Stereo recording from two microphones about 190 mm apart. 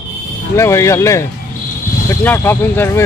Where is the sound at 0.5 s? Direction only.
15° left (ahead or behind).